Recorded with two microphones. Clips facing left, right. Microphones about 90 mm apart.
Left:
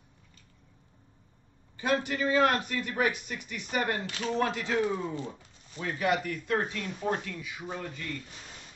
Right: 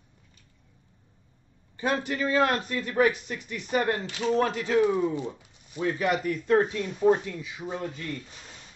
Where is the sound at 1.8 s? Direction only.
35° right (ahead or behind).